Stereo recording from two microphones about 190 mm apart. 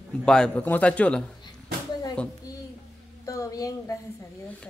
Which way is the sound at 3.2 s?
15° left (ahead or behind).